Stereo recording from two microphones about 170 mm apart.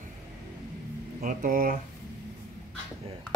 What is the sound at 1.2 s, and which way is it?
Speech, 55° right (ahead or behind).